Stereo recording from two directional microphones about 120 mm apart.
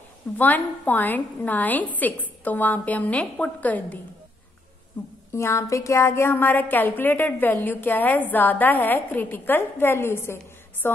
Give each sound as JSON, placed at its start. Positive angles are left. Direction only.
{"t": 0.4, "sound": "a woman's voice", "side_deg": 15}
{"t": 5.3, "sound": "a woman's voice", "side_deg": 25}